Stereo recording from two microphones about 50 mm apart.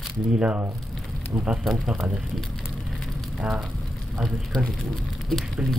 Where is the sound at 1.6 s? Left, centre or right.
Centre.